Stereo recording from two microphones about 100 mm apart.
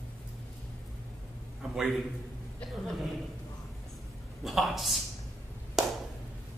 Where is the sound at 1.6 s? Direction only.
5° right (ahead or behind).